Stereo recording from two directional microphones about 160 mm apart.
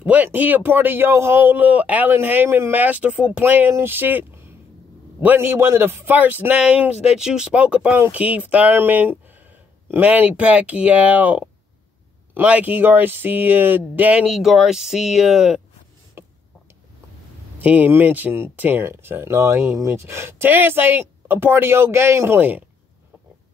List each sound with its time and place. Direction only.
0.0 s speech: 10° right (ahead or behind)
16.2 s a sound: 15° right (ahead or behind)
17.6 s speech: 10° right (ahead or behind)